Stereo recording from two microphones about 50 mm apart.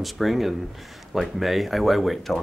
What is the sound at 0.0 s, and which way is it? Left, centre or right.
Speech, centre.